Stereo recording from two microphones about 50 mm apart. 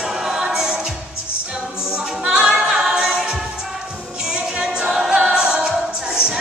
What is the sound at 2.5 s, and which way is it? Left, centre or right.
Music, centre.